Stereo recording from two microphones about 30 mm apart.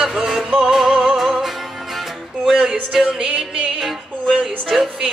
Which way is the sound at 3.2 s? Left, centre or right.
Right.